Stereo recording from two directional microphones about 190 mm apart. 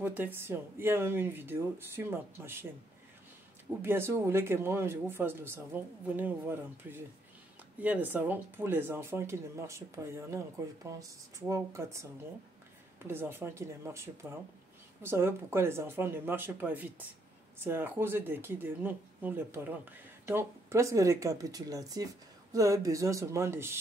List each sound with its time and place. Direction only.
0.0 s speech: 10° right (ahead or behind)
3.8 s speech: 10° right (ahead or behind)